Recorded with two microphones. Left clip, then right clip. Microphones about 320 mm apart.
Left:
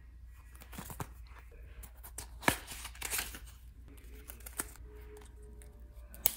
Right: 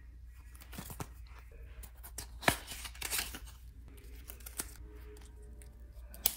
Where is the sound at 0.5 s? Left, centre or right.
Centre.